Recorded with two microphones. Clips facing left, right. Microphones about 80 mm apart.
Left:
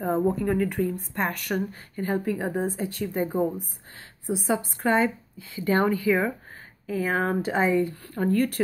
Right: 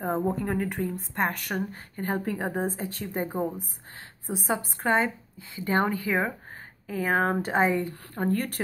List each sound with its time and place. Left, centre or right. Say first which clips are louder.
0.4 s speech: left 4 dB; right